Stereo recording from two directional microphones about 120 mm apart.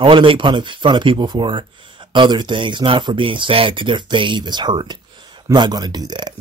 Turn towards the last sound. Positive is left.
turn(degrees=-35)  # may be behind; listen again after turning